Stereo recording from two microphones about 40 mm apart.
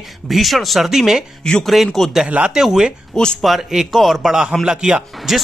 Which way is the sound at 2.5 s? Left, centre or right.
Centre.